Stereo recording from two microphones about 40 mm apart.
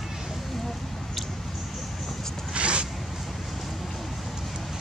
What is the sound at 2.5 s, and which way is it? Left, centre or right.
Zipper, right.